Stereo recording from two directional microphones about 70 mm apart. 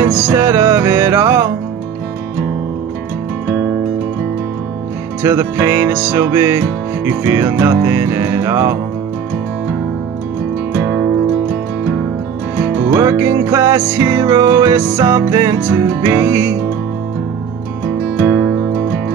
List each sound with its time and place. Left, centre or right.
0.0 s music: right
0.3 s music: right
5.2 s music: right
10.7 s music: left
12.9 s music: right
15.0 s music: right
18.1 s music: left